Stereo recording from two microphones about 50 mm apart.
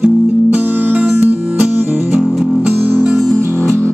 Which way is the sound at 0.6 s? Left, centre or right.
Right.